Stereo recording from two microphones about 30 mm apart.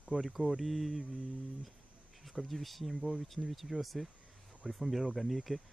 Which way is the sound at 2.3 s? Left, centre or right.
Centre.